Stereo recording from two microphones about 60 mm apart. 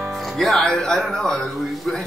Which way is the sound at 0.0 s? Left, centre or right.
Centre.